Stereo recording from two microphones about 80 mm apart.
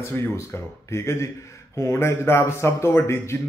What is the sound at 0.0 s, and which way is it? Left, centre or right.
Speech, left.